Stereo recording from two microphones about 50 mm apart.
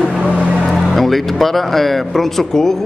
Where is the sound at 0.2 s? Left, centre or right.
Right.